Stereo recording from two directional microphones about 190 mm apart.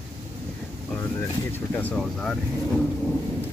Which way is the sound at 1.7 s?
5° left (ahead or behind).